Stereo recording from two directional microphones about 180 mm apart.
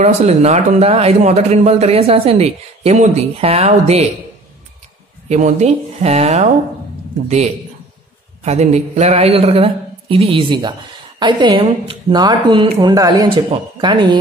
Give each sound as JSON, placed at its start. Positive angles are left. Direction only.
{"t": 0.0, "sound": "speech", "side_deg": -35}
{"t": 5.3, "sound": "a man's voice", "side_deg": -40}